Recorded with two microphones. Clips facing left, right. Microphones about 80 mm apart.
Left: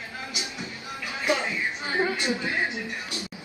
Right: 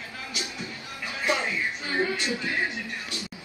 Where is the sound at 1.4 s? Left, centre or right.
Left.